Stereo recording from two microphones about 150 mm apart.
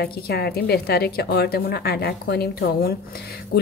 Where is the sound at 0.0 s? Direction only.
90° left.